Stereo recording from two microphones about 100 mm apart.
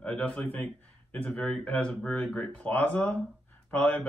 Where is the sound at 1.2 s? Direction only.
10° left (ahead or behind).